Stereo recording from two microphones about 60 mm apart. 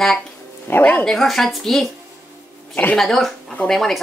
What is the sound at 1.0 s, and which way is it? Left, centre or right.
Speech, centre.